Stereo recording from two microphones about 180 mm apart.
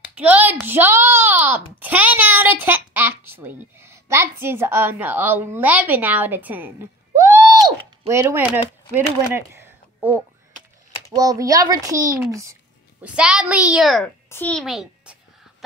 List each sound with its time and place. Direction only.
0.1 s a child's voice: 10° right (ahead or behind)
13.0 s a child's voice: 5° right (ahead or behind)